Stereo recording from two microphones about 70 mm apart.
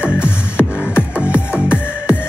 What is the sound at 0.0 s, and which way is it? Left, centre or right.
Music, centre.